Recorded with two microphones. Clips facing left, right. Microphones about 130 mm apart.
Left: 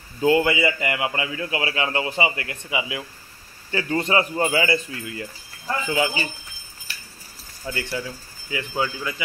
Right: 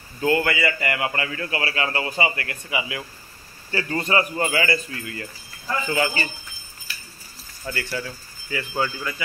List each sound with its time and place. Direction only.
0.2 s a man's voice: 15° left (ahead or behind)
5.9 s a man's voice: 10° left (ahead or behind)
7.6 s a man's voice: 10° left (ahead or behind)